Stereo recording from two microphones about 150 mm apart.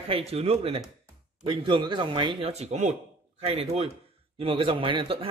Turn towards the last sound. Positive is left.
turn(degrees=-35)  # may be behind; listen again after turning